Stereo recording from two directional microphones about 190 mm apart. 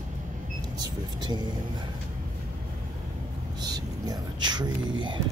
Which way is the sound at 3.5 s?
20° right (ahead or behind).